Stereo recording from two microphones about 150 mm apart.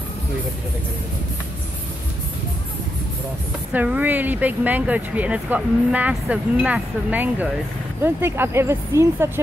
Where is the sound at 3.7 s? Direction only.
10° right (ahead or behind).